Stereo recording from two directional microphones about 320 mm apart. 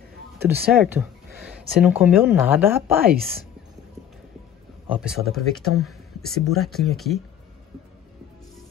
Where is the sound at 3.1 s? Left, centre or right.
Right.